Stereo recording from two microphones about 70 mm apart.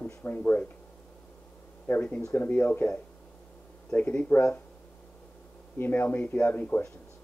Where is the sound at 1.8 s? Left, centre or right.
Left.